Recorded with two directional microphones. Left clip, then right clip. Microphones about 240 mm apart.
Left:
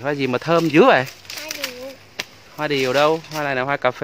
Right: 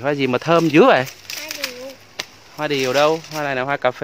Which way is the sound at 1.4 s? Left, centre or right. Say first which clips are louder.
Even; centre.